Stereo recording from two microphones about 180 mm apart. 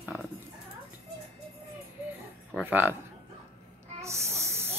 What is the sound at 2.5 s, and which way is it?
Speech, 10° right (ahead or behind).